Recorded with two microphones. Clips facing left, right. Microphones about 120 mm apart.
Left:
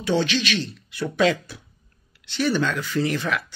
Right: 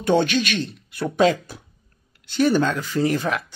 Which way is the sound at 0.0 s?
55° right (ahead or behind).